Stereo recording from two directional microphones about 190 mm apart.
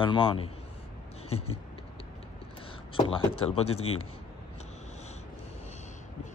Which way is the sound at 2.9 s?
30° left (ahead or behind).